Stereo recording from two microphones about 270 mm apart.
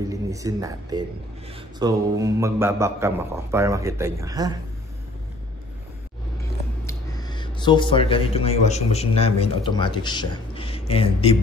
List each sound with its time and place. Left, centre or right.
0.1 s a man's voice: centre
6.9 s a man's voice: centre